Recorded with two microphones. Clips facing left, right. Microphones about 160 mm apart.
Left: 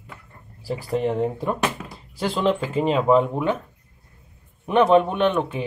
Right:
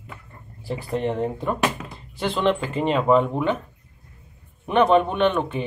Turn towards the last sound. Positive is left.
turn(degrees=5)  # may be behind; listen again after turning